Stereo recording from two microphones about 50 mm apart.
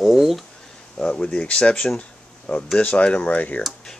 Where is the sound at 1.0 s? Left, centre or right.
Centre.